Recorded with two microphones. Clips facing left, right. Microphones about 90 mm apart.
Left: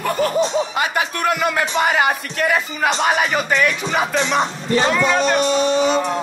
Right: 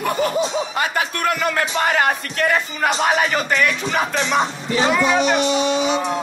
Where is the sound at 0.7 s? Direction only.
15° left (ahead or behind); by 5.4 s 5° right (ahead or behind).